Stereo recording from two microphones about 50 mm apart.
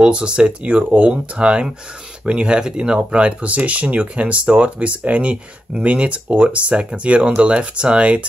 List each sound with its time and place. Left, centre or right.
0.0 s speech: right